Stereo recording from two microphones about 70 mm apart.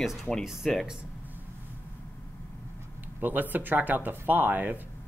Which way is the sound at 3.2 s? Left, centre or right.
Right.